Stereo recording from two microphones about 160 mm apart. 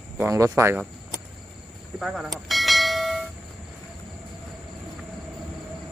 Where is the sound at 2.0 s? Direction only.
5° right (ahead or behind).